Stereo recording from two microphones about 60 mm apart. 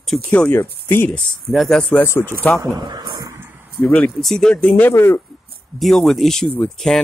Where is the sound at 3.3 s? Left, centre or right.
Right.